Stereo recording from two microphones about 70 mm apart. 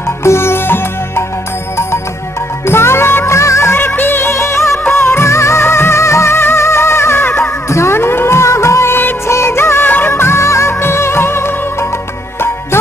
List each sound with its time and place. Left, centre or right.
0.2 s music: left
2.6 s music: left
3.7 s music: left